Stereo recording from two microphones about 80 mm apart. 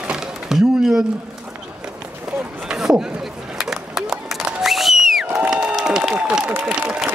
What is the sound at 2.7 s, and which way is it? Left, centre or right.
Speech, centre.